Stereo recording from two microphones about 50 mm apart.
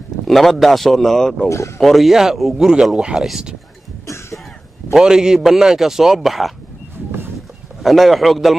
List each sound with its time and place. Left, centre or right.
0.3 s a man's voice: centre
4.9 s a man's voice: centre
7.8 s speech: centre